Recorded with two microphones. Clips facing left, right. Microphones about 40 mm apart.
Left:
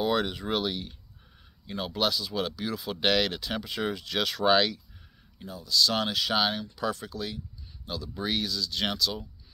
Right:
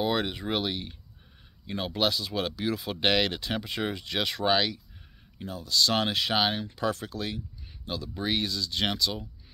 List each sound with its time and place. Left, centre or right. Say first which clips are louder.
0.0 s speech: left 1 dB; centre
2.0 s speech: even; right
4.5 s speech: left 3 dB; centre
5.4 s speech: even; right
6.9 s speech: right 1 dB; right